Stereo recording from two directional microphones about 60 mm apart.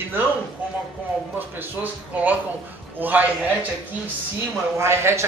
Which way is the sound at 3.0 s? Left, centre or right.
Right.